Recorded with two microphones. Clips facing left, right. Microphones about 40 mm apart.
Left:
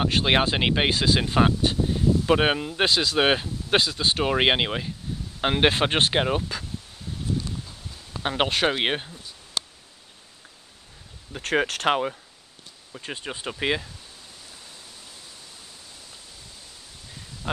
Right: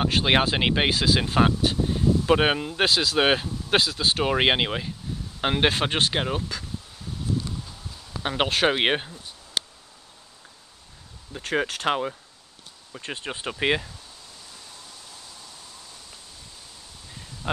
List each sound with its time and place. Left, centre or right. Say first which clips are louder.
0.0 s speech: even; centre
5.9 s speech: left 2 dB; left
6.1 s speech: left 3 dB; centre
8.2 s speech: even; centre
8.6 s speech: right 2 dB; centre
11.3 s speech: left 1 dB; left
11.9 s speech: left 2 dB; centre
12.9 s speech: right 1 dB; centre